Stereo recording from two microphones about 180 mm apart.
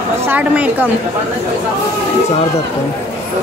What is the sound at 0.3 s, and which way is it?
Speech, 10° right (ahead or behind).